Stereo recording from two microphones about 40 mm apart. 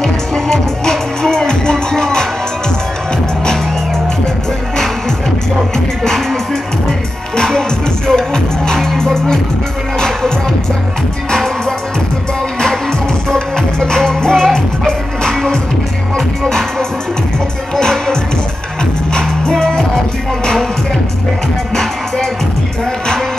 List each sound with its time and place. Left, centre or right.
0.0 s music: centre
6.0 s music: centre
11.3 s music: centre
13.3 s music: centre
16.4 s music: centre
21.7 s music: centre